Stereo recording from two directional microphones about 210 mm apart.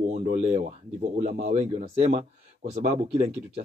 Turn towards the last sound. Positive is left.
turn(degrees=-30)  # may be behind; listen again after turning